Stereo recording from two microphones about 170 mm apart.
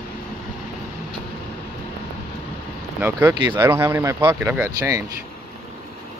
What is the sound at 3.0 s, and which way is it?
Speech, 10° right (ahead or behind).